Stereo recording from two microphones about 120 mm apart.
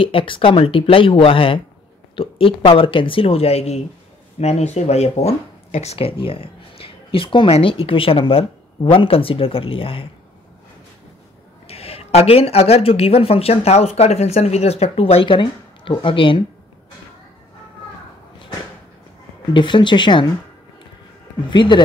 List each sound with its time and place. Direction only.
0.0 s speech: 45° left (ahead or behind)
11.6 s a woman's voice: 60° left (ahead or behind)
19.5 s speech: 40° left (ahead or behind)
21.5 s speech: 40° left (ahead or behind)